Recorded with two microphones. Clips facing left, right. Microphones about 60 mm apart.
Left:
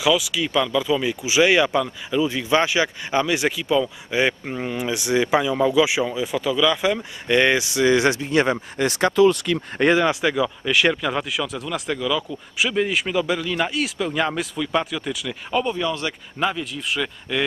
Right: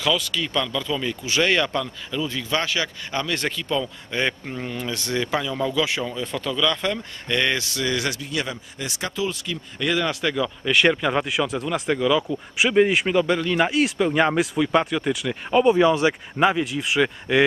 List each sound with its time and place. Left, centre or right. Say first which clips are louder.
0.0 s speech: left 3 dB; centre; by 8.5 s left
8.7 s speech: left 11 dB; left
9.9 s speech: left 4 dB; centre